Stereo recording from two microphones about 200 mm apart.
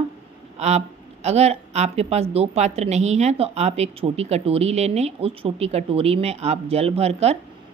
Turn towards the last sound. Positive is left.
turn(degrees=-30)  # may be behind; listen again after turning